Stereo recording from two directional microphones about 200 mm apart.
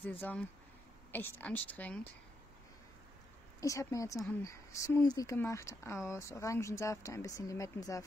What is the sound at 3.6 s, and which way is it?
Speech, 15° left (ahead or behind).